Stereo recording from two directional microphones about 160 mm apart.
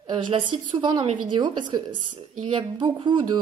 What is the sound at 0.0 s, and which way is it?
A woman's voice, 30° right (ahead or behind).